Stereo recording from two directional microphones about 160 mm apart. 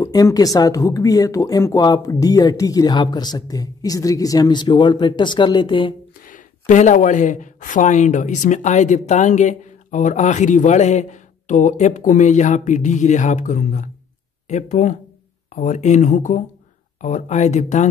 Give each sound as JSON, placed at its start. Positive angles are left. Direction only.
{"t": 0.0, "sound": "speech", "side_deg": 25}
{"t": 6.2, "sound": "speech", "side_deg": 55}